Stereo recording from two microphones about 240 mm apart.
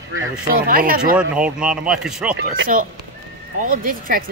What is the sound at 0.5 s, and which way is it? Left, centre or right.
Speech, right.